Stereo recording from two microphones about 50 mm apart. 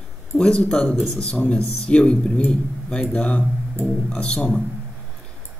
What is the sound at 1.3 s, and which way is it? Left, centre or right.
A man's voice, left.